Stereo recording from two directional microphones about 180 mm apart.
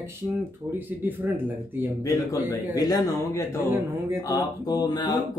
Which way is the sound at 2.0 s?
20° left (ahead or behind).